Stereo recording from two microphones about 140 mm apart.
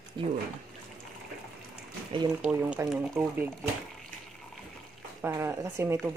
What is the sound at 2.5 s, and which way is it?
Speech, 10° right (ahead or behind).